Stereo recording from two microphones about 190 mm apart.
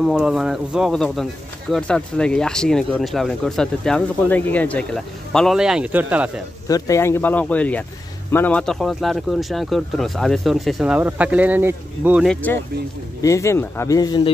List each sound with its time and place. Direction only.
0.0 s speech: 5° right (ahead or behind)
6.7 s speech: 15° left (ahead or behind); by 12.3 s 10° right (ahead or behind)
12.3 s speech: 10° left (ahead or behind)